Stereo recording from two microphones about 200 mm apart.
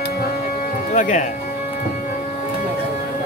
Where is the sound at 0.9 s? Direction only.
40° left (ahead or behind).